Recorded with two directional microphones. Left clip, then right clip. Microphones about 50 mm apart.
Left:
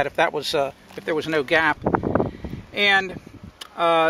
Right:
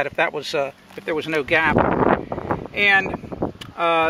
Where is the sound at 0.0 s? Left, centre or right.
Left.